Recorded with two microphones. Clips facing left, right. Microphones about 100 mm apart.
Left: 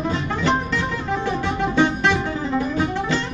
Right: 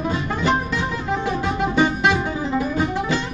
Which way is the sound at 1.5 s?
10° right (ahead or behind).